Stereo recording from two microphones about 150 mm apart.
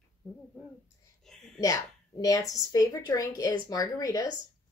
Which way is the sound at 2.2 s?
25° left (ahead or behind).